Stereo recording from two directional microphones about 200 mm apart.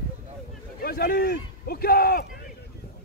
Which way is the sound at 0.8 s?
50° left (ahead or behind).